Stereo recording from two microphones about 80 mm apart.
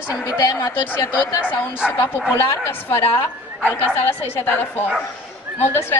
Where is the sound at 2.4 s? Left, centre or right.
Left.